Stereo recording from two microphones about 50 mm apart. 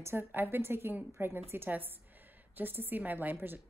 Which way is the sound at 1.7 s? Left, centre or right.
Right.